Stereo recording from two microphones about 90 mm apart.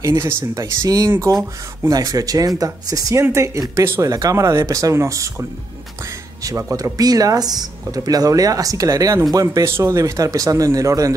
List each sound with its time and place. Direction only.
0.0 s speech: 30° right (ahead or behind)
0.8 s speech: 45° right (ahead or behind)
4.1 s speech: 40° right (ahead or behind)